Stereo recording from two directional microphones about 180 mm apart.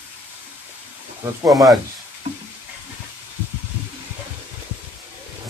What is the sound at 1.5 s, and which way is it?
Speech, centre (ahead or behind).